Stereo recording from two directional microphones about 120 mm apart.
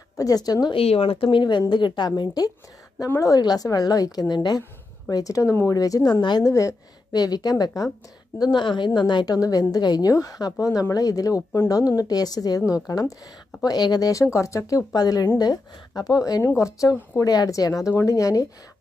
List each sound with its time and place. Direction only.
0.2 s a woman's voice: 30° left (ahead or behind)
0.7 s a woman's voice: 55° left (ahead or behind); by 18.5 s 30° left (ahead or behind)